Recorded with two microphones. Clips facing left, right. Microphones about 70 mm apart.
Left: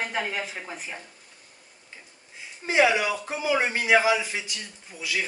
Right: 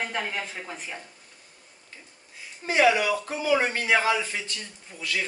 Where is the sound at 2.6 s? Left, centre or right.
Centre.